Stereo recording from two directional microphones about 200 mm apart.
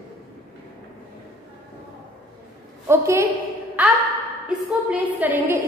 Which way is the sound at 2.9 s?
15° right (ahead or behind).